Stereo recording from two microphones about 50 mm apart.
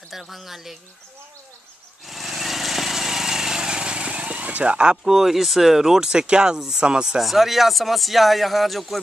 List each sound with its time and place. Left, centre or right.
0.1 s speech: centre
2.0 s lawn mower: centre; by 4.7 s right
4.7 s speech: centre
5.1 s speech: centre
7.2 s speech: centre